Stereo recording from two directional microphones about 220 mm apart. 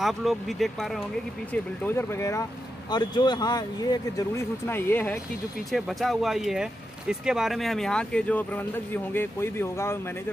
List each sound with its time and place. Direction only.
0.0 s speech: centre (ahead or behind)